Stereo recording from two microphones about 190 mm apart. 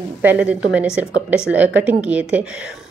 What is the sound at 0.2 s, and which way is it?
Speech, 10° right (ahead or behind).